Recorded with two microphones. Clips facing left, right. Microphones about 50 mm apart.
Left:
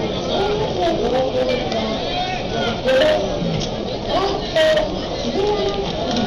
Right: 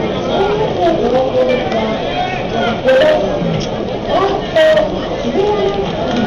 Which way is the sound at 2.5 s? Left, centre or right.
Right.